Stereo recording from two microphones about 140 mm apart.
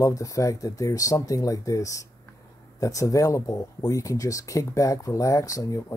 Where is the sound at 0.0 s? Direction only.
25° left (ahead or behind).